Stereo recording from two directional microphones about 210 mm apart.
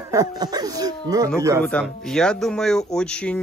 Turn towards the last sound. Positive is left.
turn(degrees=5)  # may be behind; listen again after turning